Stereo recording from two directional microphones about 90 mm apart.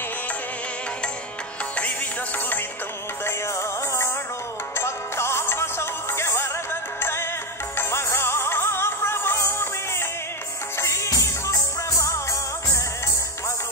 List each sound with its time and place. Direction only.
1.8 s music: 20° left (ahead or behind)
3.3 s music: 30° left (ahead or behind)